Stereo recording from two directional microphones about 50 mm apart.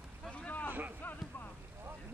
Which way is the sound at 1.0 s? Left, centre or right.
Left.